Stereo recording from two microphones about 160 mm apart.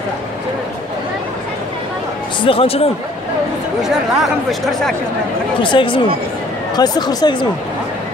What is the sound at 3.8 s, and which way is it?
Speech, centre (ahead or behind).